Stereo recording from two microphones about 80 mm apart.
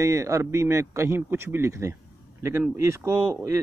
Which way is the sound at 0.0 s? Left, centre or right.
Right.